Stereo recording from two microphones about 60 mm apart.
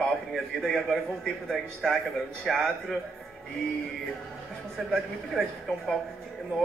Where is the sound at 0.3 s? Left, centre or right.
Centre.